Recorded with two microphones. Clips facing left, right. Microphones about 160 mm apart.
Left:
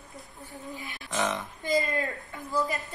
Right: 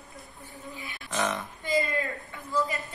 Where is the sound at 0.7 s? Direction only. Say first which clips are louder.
Left 2 dB; 40° left (ahead or behind).